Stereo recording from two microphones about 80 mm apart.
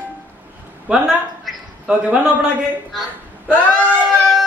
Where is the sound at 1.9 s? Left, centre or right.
Centre.